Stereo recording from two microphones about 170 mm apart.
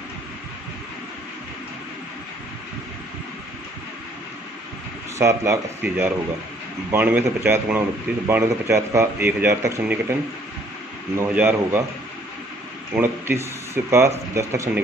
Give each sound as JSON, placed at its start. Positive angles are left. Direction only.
{"t": 5.2, "sound": "speech", "side_deg": -15}
{"t": 11.1, "sound": "speech", "side_deg": -10}
{"t": 12.9, "sound": "speech", "side_deg": -15}